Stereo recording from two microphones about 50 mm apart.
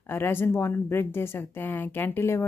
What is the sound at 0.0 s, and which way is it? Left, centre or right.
A woman's voice, left.